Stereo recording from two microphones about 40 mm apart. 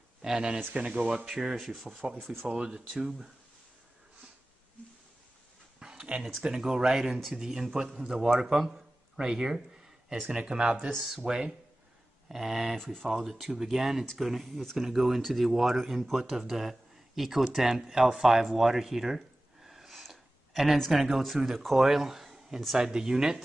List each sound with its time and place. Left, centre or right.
0.2 s speech: centre
0.7 s speech: right
1.2 s speech: centre
1.6 s speech: centre
2.4 s speech: right
5.8 s a sound: centre
6.4 s speech: centre
10.3 s speech: right
12.3 s speech: centre
12.7 s speech: centre
20.1 s a sound: centre
20.9 s speech: centre